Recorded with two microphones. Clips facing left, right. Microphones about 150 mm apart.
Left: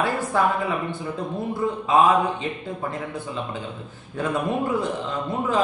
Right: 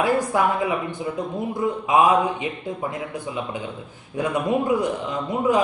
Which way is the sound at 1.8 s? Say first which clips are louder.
Even; 15° right (ahead or behind).